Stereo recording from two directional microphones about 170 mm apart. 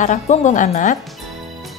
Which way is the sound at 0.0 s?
45° left (ahead or behind).